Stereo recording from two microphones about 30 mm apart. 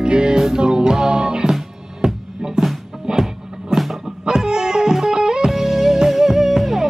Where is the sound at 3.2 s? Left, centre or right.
Centre.